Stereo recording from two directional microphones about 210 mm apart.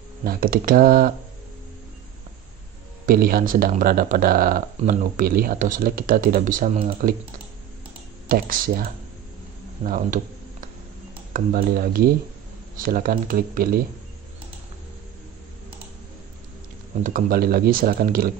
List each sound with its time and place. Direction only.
0.2 s speech: 45° right (ahead or behind)
3.1 s speech: 45° right (ahead or behind)
8.3 s speech: 45° right (ahead or behind)
9.8 s tick-tock: 40° right (ahead or behind)
11.3 s speech: 45° right (ahead or behind)
17.0 s speech: 40° right (ahead or behind)